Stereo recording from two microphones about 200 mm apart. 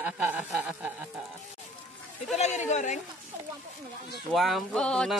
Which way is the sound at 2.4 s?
35° left (ahead or behind).